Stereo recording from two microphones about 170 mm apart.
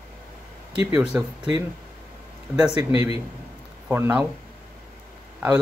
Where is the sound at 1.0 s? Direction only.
5° right (ahead or behind).